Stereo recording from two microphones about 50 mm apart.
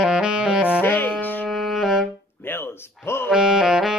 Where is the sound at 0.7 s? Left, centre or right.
Left.